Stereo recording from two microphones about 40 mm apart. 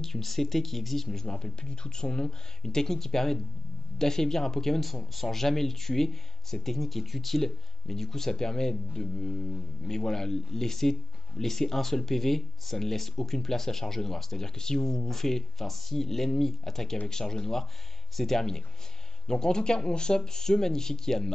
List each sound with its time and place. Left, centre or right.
0.0 s speech: centre
1.2 s speech: left